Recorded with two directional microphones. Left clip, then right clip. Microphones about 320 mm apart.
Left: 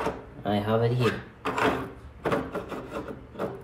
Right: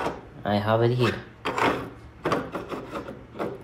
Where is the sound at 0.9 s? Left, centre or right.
Centre.